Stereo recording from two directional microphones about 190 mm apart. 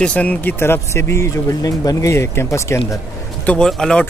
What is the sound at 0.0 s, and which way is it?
Speech, 5° left (ahead or behind).